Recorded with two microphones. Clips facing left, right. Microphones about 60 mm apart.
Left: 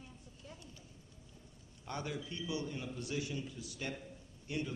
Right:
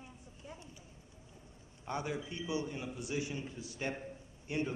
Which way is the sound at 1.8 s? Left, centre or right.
Right.